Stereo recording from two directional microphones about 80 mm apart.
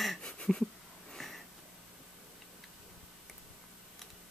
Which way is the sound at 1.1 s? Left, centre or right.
Centre.